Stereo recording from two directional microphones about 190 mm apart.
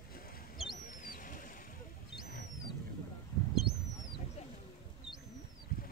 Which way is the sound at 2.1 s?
55° left (ahead or behind).